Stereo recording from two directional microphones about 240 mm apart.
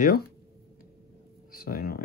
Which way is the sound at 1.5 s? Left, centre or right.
Left.